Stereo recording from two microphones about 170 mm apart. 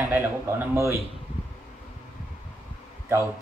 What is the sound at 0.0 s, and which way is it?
Speech, 15° right (ahead or behind).